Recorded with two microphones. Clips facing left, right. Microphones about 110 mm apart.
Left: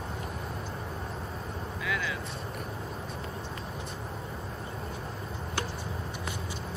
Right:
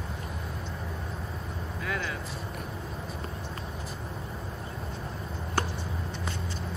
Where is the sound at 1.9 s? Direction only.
45° right (ahead or behind).